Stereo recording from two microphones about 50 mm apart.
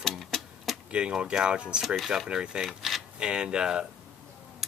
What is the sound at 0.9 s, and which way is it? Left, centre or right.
Speech, right.